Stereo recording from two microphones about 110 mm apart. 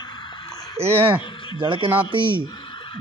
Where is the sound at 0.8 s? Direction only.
20° right (ahead or behind).